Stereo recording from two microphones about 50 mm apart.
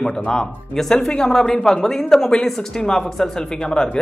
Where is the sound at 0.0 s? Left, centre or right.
Centre.